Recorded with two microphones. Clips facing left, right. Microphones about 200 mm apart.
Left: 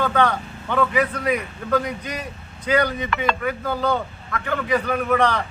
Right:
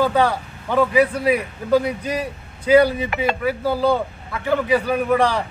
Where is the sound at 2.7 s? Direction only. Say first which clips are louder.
Right 6 dB; 10° right (ahead or behind).